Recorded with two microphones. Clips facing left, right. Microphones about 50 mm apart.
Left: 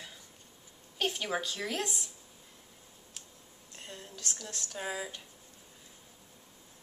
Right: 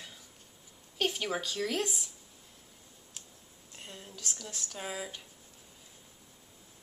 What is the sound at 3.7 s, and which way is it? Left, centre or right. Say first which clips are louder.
Speech: left 1 dB; centre.